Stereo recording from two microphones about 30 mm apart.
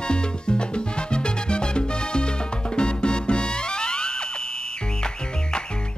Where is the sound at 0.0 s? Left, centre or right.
Left.